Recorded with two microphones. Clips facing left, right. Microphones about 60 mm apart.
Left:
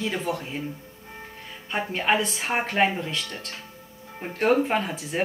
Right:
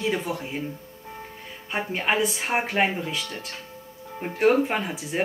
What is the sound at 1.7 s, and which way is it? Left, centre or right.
Speech, centre.